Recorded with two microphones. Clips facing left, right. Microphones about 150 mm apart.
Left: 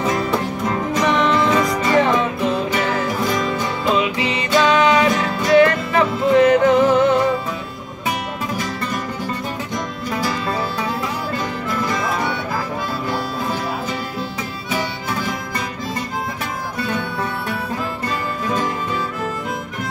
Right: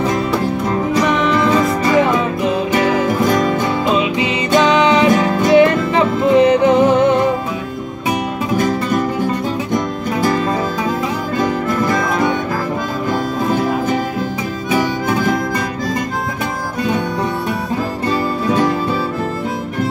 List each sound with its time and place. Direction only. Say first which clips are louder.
1.0 s music: left 1 dB; 5° right (ahead or behind)
3.1 s music: right 6 dB; 50° right (ahead or behind)
3.8 s music: right 3 dB; 20° right (ahead or behind)
8.5 s music: right 12 dB; 55° right (ahead or behind)
11.3 s music: right 7 dB; 50° right (ahead or behind)